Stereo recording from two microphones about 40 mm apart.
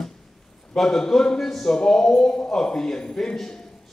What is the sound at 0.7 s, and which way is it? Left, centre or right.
A man's voice, centre.